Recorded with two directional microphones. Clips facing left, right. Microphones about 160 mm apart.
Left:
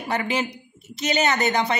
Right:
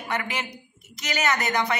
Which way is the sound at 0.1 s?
30° left (ahead or behind).